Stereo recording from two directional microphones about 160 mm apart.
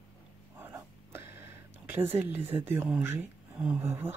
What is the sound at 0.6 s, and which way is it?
Whispering, 15° right (ahead or behind).